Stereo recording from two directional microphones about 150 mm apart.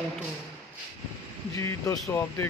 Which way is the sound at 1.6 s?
20° left (ahead or behind).